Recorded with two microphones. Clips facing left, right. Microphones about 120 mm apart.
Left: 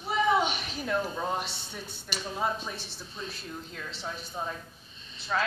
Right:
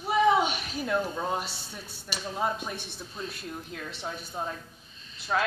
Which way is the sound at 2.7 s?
55° right (ahead or behind).